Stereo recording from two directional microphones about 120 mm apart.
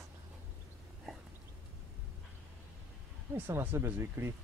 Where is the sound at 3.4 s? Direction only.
20° right (ahead or behind).